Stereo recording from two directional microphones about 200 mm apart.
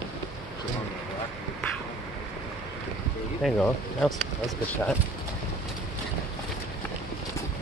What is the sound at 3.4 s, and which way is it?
Speech, centre (ahead or behind).